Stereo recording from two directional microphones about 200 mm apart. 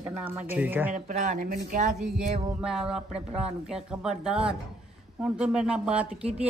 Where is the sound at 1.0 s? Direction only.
40° right (ahead or behind).